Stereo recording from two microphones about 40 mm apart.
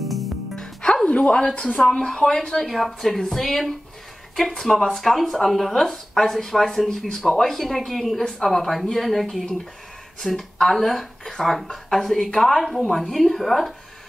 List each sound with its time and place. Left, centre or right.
0.0 s music: centre
1.0 s a sound: left
1.6 s speech: centre
8.2 s speech: centre
8.5 s speech: centre